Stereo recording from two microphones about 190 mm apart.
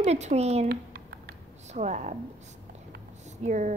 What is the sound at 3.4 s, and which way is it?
Speech, 40° right (ahead or behind).